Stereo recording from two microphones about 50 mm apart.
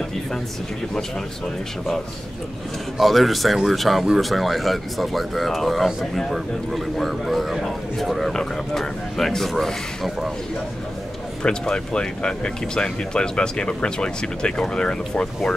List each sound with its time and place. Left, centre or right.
3.0 s speech: centre
11.4 s speech: centre